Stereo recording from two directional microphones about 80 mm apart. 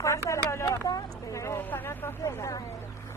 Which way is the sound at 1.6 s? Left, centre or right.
Left.